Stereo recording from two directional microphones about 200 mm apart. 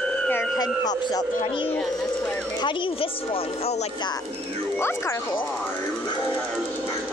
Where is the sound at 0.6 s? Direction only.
20° left (ahead or behind).